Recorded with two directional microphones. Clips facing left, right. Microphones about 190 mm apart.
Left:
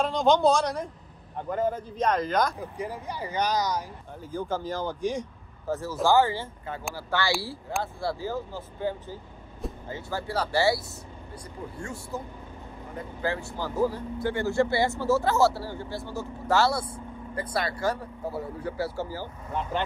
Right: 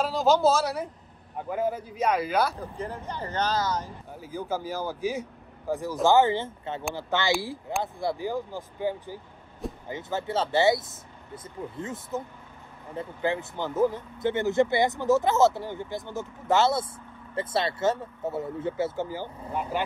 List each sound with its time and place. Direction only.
0.0 s a man's voice: 5° right (ahead or behind)
2.6 s speech: 10° left (ahead or behind)
4.3 s speech: 10° right (ahead or behind)